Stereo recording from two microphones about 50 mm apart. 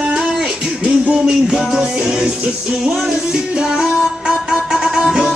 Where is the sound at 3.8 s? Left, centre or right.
Centre.